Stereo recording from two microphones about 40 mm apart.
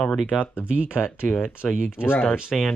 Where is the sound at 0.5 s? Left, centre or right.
Right.